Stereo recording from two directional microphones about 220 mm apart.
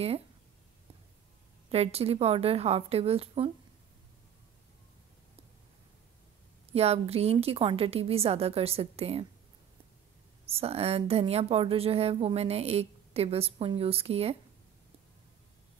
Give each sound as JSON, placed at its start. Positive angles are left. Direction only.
{"t": 1.7, "sound": "speech", "side_deg": -25}
{"t": 6.7, "sound": "speech", "side_deg": -30}
{"t": 10.5, "sound": "speech", "side_deg": -25}